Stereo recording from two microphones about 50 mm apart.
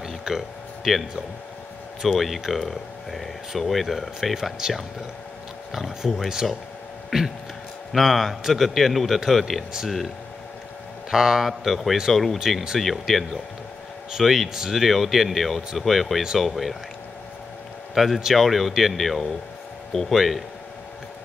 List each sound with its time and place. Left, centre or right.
0.3 s speech: centre
7.1 s a sound: centre
7.9 s speech: centre
11.1 s speech: centre
12.4 s speech: centre
17.9 s speech: centre